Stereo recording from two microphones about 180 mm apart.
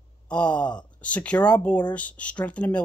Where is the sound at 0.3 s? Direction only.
5° left (ahead or behind).